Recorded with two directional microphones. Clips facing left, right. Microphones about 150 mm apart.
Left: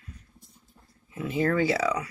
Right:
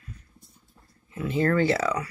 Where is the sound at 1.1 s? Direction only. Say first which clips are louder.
Right 2 dB; 10° left (ahead or behind).